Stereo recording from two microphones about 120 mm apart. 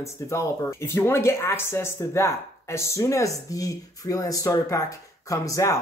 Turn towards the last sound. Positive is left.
turn(degrees=25)  # may be behind; listen again after turning